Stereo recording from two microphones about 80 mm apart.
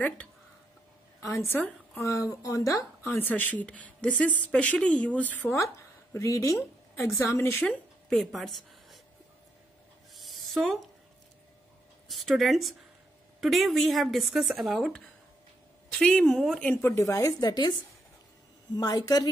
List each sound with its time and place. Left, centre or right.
1.2 s a woman's voice: left
3.2 s speech: left
5.4 s speech: left
6.1 s a woman's voice: left
8.1 s a woman's voice: centre
10.1 s a sound: centre
12.1 s speech: centre
16.5 s speech: centre
16.8 s a woman's voice: left
18.8 s a woman's voice: left